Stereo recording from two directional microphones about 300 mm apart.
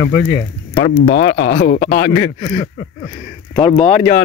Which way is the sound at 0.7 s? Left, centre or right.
Left.